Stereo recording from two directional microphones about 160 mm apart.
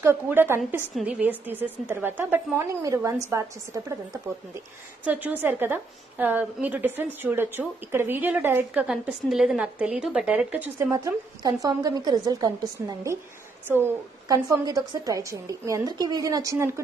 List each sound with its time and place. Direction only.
0.0 s a woman's voice: 15° right (ahead or behind)
5.0 s a woman's voice: 10° right (ahead or behind)
8.8 s a woman's voice: 5° right (ahead or behind)